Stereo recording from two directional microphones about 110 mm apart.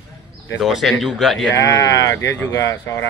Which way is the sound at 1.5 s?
35° left (ahead or behind).